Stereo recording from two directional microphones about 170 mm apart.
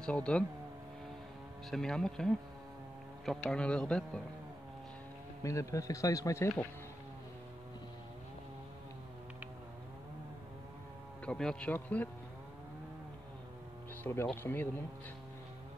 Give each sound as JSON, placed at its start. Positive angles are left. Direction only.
{"t": 0.0, "sound": "speech", "side_deg": 5}
{"t": 1.7, "sound": "speech", "side_deg": 5}
{"t": 5.4, "sound": "speech", "side_deg": 20}
{"t": 11.2, "sound": "speech", "side_deg": 5}
{"t": 14.2, "sound": "speech", "side_deg": 10}